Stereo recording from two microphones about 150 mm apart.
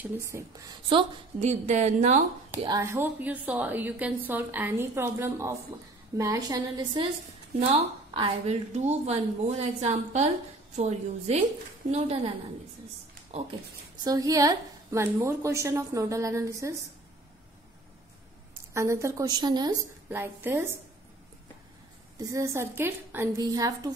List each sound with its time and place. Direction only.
0.0 s a woman's voice: 20° right (ahead or behind)
1.4 s speech: 50° right (ahead or behind)
2.5 s a woman's voice: 20° right (ahead or behind); by 12.4 s 40° right (ahead or behind)
14.0 s a woman's voice: 25° right (ahead or behind)
18.7 s a woman's voice: 20° right (ahead or behind)
20.1 s a woman's voice: 15° right (ahead or behind)
22.2 s a woman's voice: 20° right (ahead or behind)